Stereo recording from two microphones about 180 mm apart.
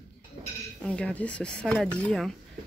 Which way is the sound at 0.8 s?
5° left (ahead or behind).